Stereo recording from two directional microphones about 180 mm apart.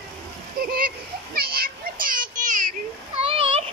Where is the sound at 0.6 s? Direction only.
55° right (ahead or behind).